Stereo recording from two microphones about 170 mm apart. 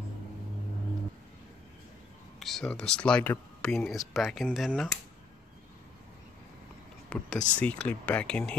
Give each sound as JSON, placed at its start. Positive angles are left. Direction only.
{"t": 2.4, "sound": "speech", "side_deg": 5}
{"t": 7.1, "sound": "speech", "side_deg": 5}